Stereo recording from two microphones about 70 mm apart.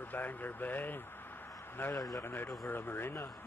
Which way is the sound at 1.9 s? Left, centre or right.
Left.